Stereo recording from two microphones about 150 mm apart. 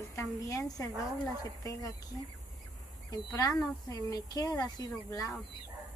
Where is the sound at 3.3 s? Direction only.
25° left (ahead or behind).